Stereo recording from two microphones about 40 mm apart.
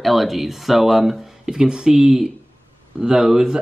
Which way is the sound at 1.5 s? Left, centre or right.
Centre.